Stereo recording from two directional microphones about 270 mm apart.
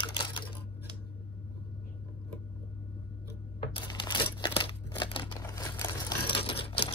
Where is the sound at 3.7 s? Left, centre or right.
Centre.